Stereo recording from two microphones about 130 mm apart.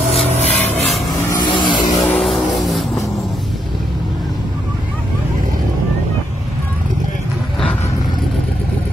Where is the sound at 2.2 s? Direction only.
Centre (ahead or behind).